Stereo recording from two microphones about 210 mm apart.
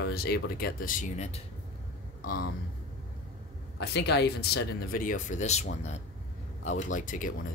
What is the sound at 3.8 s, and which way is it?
Speech, 50° left (ahead or behind).